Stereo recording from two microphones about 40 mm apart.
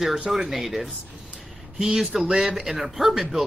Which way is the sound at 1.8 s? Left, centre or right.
Centre.